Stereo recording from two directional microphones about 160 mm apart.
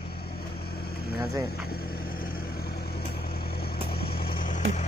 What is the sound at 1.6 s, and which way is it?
Vehicle, 70° left (ahead or behind).